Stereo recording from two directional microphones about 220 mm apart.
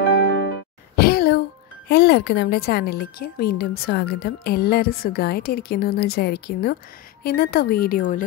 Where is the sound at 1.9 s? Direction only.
50° left (ahead or behind).